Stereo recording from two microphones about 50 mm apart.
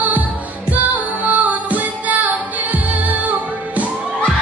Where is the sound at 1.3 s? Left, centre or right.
Right.